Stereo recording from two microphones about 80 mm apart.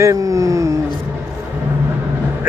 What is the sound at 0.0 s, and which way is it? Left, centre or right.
Speech, right.